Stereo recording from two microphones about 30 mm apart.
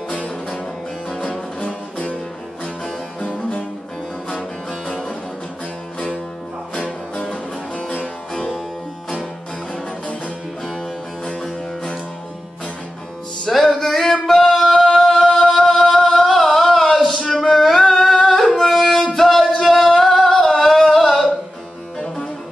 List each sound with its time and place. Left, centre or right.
3.2 s music: left
6.7 s music: left
13.5 s music: centre
14.2 s singing: centre
15.2 s music: centre
17.5 s carnatic music: centre
18.7 s music: centre
20.0 s singing: centre
20.2 s singing: centre
20.5 s music: centre